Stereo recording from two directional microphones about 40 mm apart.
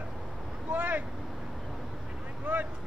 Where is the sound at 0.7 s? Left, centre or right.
Right.